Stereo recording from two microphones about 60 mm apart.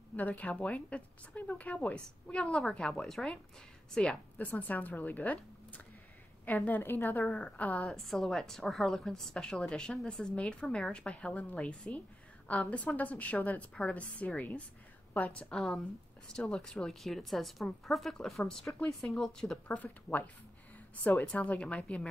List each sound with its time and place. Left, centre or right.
0.1 s speech: left
2.3 s a woman's voice: centre
4.4 s a woman's voice: left
7.2 s speech: centre
7.8 s a woman's voice: centre; by 15.4 s left
15.5 s a woman's voice: centre
19.7 s speech: left
21.3 s speech: centre